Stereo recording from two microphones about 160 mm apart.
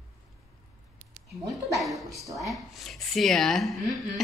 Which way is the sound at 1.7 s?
Centre (ahead or behind).